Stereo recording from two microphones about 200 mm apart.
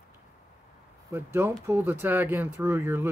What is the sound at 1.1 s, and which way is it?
Speech, 10° right (ahead or behind).